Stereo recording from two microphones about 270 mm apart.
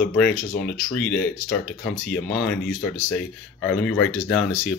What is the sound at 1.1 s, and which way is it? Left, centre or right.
Speech, left.